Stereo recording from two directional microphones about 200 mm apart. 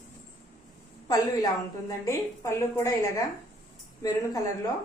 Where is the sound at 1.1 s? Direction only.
15° left (ahead or behind).